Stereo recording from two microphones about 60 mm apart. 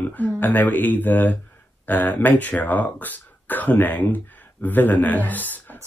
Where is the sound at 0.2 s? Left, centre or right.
Left.